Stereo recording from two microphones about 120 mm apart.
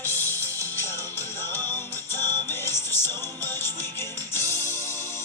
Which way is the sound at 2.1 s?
20° left (ahead or behind).